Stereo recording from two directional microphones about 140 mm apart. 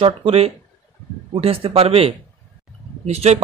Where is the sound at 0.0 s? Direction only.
40° right (ahead or behind).